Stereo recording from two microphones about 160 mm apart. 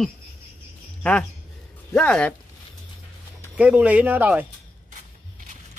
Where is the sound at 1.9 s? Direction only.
5° left (ahead or behind).